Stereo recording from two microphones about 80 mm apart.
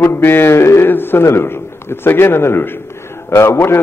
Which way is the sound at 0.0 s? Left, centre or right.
Left.